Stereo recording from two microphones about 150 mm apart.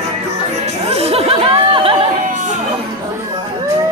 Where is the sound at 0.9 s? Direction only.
40° right (ahead or behind).